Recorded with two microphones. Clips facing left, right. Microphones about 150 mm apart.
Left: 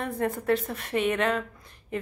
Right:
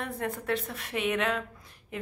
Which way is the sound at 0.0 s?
Centre (ahead or behind).